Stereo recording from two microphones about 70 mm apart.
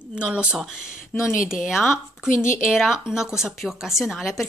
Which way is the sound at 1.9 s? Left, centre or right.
Left.